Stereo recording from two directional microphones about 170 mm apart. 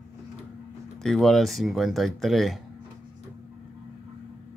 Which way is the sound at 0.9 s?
5° left (ahead or behind).